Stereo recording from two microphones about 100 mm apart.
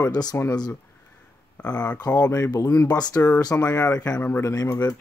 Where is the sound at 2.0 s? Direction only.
40° left (ahead or behind).